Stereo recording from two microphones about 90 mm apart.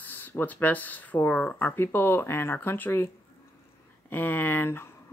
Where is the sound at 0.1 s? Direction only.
20° left (ahead or behind).